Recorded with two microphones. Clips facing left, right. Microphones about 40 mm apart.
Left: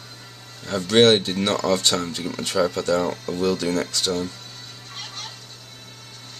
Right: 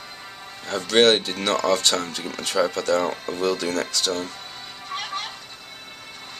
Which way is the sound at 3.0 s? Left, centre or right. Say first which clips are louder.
Left 1 dB; right.